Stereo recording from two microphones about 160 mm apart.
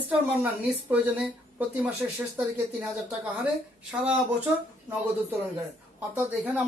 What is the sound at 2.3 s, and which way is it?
Speech, 10° right (ahead or behind).